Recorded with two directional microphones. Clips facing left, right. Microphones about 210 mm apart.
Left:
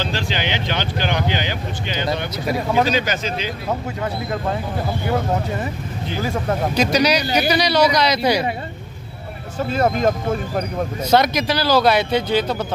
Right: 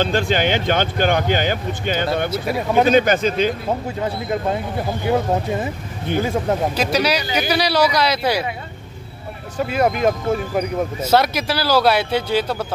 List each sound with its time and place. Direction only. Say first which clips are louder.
0.0 s speech: right 6 dB; 50° right (ahead or behind)
4.0 s speech: right 2 dB; 20° right (ahead or behind)
6.7 s speech: left 2 dB; 5° right (ahead or behind)
9.7 s speech: even; 10° right (ahead or behind)